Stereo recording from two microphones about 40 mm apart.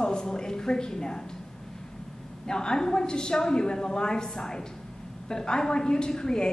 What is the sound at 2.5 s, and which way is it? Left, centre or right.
A woman's voice, centre.